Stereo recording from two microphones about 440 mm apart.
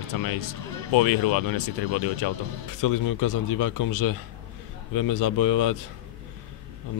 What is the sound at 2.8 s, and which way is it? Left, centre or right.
Speech, left.